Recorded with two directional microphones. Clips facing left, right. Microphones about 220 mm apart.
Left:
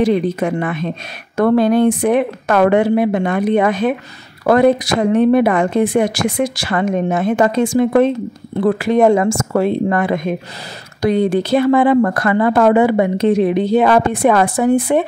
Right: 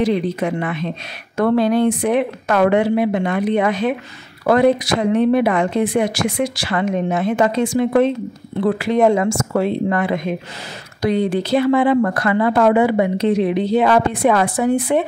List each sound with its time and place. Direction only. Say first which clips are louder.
0.0 s speech: left 3 dB; 50° left (ahead or behind)